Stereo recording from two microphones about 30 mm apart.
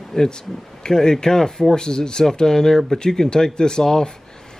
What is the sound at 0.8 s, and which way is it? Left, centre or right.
A man's voice, left.